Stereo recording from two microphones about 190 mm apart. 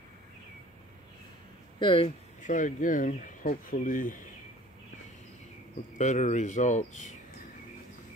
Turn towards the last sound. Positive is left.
turn(degrees=40)  # may be behind; listen again after turning